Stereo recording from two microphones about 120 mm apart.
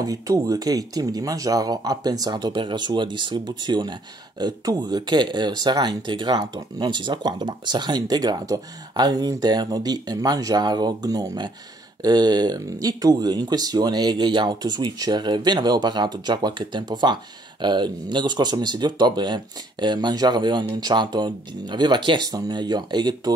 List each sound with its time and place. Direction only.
0.0 s speech: 30° right (ahead or behind)